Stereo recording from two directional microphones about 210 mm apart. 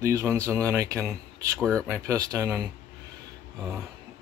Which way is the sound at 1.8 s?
10° right (ahead or behind).